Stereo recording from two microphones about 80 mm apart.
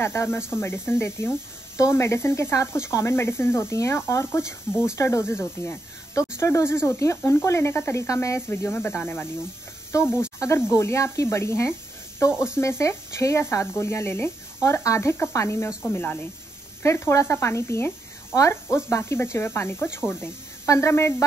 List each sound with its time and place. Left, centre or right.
0.0 s speech: left
8.5 s cricket: left
10.7 s speech: left
15.9 s cricket: left
16.8 s speech: left
20.6 s speech: left